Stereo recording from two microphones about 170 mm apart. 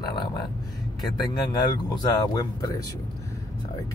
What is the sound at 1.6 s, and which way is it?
Speech, 25° left (ahead or behind).